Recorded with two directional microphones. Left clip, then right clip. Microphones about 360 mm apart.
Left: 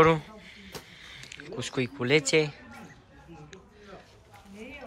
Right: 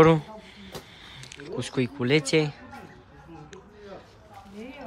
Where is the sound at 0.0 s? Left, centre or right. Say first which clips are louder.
Right 3 dB; centre.